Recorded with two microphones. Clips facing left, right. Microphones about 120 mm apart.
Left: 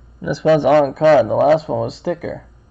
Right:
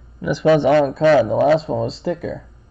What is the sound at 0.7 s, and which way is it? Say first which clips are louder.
Speech: left 2 dB; 60° left (ahead or behind).